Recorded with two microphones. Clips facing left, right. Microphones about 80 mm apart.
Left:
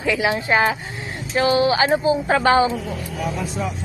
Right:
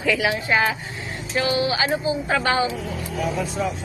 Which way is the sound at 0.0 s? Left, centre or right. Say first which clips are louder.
Left 1 dB; left.